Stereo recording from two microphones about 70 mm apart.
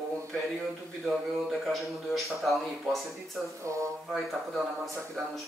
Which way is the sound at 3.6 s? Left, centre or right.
Right.